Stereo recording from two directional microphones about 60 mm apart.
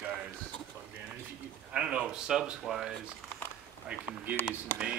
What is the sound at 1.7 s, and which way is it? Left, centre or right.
Speech, centre.